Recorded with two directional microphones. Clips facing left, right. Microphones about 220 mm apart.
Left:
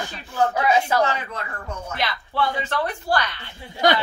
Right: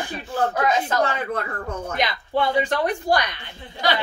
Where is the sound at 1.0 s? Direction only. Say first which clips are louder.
Right 1 dB; 55° right (ahead or behind).